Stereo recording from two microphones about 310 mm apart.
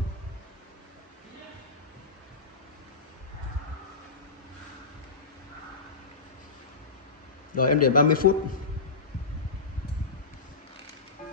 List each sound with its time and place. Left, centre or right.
7.5 s a man's voice: left